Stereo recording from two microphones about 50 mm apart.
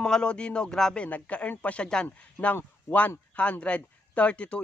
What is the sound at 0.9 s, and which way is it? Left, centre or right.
Speech, left.